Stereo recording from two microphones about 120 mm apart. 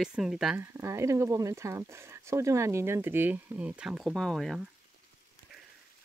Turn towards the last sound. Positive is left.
turn(degrees=0)  # may be behind; listen again after turning